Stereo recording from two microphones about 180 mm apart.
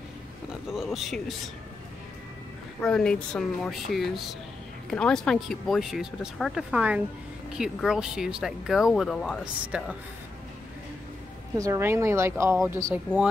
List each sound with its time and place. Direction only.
0.7 s speech: centre (ahead or behind)
2.8 s speech: 5° left (ahead or behind)
11.5 s a woman's voice: 15° right (ahead or behind)